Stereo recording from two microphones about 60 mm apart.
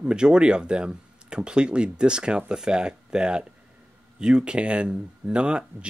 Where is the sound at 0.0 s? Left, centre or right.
Centre.